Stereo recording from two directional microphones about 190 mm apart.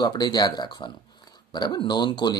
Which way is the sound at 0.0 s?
20° left (ahead or behind).